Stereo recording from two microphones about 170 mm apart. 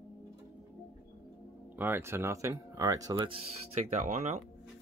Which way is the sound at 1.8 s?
15° right (ahead or behind).